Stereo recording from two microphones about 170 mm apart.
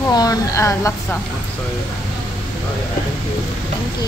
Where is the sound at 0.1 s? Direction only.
20° left (ahead or behind).